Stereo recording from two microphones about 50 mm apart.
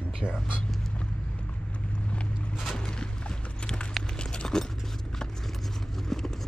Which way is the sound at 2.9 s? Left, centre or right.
Centre.